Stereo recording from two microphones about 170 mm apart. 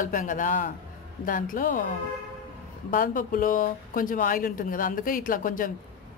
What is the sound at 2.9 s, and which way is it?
Speech, 55° left (ahead or behind).